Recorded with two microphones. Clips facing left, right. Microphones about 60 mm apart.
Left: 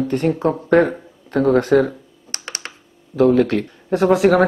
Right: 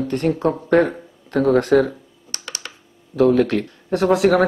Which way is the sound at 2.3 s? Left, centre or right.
Left.